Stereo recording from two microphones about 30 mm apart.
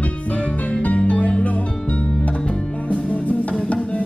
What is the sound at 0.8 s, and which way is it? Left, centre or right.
Music, left.